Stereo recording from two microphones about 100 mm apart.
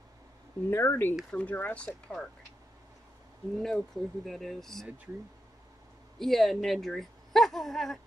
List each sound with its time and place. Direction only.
0.7 s speech: 25° left (ahead or behind)
3.5 s speech: 5° left (ahead or behind)
6.1 s speech: centre (ahead or behind)